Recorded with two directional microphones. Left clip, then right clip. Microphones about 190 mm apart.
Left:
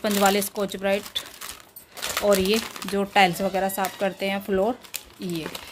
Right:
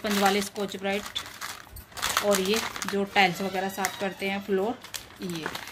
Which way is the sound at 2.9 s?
50° left (ahead or behind).